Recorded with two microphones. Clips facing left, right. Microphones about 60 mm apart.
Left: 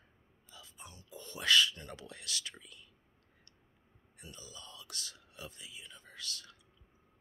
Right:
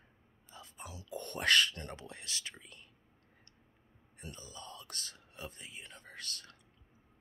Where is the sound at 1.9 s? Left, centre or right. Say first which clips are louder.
Left 1 dB; right.